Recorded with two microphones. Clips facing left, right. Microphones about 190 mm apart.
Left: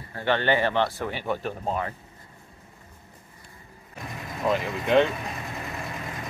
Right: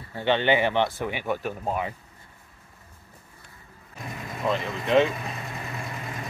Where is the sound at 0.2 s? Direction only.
20° right (ahead or behind).